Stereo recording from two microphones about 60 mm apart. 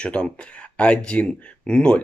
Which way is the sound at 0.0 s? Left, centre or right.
Centre.